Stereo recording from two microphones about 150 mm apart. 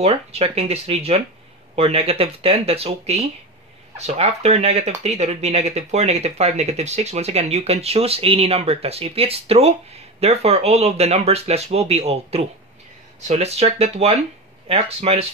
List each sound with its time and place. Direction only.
0.0 s speech: 45° right (ahead or behind)